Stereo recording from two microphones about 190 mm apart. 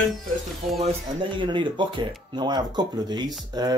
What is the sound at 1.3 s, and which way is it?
Speech, 25° right (ahead or behind).